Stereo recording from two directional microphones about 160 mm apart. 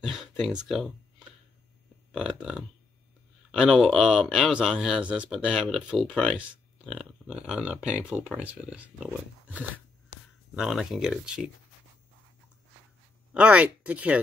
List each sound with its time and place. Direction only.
0.0 s a sound: centre (ahead or behind)
2.1 s speech: 5° right (ahead or behind)
13.3 s speech: 5° right (ahead or behind)